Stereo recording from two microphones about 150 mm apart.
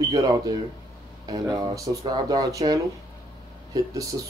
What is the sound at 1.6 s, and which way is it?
Speech, 25° right (ahead or behind).